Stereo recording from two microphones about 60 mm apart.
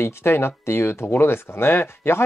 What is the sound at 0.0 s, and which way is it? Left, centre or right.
Speech, left.